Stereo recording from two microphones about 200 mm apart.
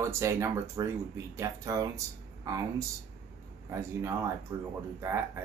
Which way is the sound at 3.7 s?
15° right (ahead or behind).